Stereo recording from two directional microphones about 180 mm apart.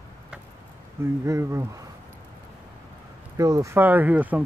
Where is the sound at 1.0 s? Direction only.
15° right (ahead or behind).